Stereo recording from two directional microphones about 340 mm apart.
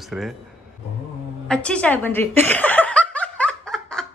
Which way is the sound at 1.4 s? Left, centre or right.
Centre.